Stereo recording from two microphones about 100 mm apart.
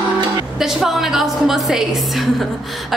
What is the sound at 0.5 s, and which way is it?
A woman's voice, 5° right (ahead or behind).